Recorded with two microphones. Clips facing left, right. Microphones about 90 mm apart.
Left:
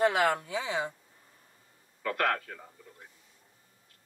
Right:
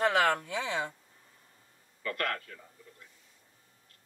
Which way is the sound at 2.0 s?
85° left.